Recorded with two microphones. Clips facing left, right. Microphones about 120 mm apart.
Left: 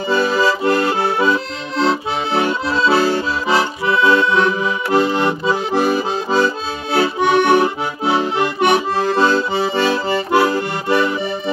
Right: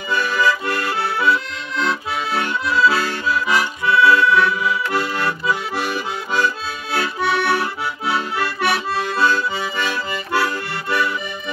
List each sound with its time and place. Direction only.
0.1 s accordion: 30° left (ahead or behind)